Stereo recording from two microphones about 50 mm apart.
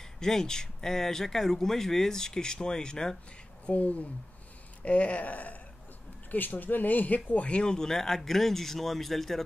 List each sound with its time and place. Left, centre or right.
0.2 s speech: centre
3.6 s speech: left
7.3 s speech: left; by 9.4 s centre